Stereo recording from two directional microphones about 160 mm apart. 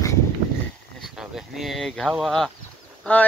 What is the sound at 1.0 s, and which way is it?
Speech, centre (ahead or behind).